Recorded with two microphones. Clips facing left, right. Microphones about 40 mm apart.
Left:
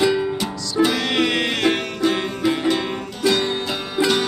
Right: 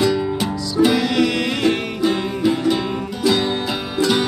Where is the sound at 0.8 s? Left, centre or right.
Left.